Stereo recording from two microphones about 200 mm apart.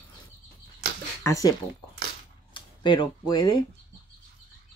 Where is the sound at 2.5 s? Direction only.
25° left (ahead or behind).